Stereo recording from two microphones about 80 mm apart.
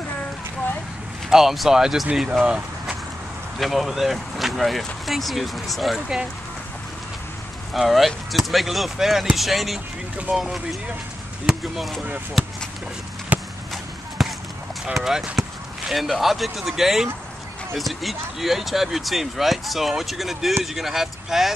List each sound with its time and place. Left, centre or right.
1.3 s speech: centre
2.4 s vehicle: centre
3.5 s speech: centre
7.7 s speech: centre
13.3 s a sound: centre
14.2 s a sound: centre
15.0 s speech: centre